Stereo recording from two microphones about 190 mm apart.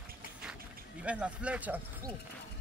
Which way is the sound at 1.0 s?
5° right (ahead or behind).